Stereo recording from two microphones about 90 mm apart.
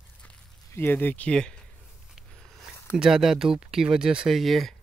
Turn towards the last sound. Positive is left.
turn(degrees=0)  # may be behind; listen again after turning